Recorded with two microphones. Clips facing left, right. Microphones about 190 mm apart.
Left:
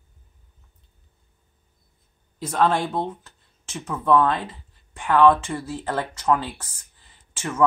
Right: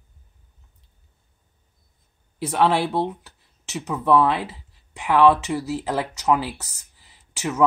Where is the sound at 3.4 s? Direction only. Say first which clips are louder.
Right 5 dB; 75° right (ahead or behind).